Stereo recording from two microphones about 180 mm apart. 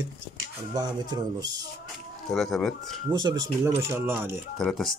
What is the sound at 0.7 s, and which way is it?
Speech, 25° right (ahead or behind).